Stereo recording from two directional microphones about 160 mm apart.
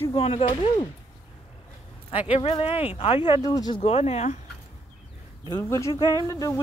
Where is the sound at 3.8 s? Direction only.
40° left (ahead or behind).